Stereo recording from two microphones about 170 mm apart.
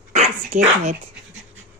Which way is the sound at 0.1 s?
45° right (ahead or behind).